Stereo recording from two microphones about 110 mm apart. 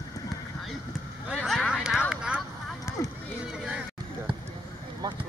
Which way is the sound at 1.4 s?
5° left (ahead or behind).